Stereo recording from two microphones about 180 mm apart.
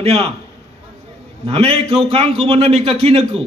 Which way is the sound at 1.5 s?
35° right (ahead or behind).